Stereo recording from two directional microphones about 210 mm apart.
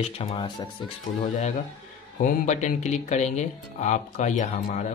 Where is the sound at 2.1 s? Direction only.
35° left (ahead or behind).